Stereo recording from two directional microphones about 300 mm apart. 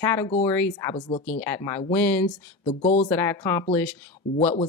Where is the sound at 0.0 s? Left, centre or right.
Centre.